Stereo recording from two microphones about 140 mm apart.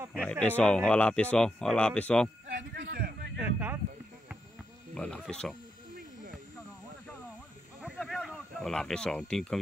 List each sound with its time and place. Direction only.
0.1 s speech: 5° left (ahead or behind)
2.4 s a sound: 90° right
3.3 s speech: 15° right (ahead or behind)
4.9 s speech: 5° left (ahead or behind)
8.0 s speech: 5° left (ahead or behind)